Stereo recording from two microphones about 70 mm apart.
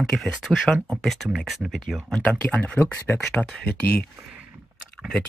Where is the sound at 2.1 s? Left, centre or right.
Centre.